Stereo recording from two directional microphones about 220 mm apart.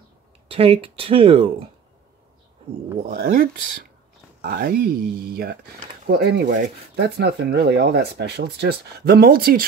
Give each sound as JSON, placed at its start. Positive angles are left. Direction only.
{"t": 0.5, "sound": "speech", "side_deg": -25}
{"t": 3.0, "sound": "speech", "side_deg": -35}